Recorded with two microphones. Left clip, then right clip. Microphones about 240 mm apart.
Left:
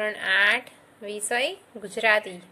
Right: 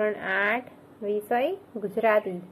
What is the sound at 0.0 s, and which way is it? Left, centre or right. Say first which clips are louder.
A woman's voice: left 4 dB; left.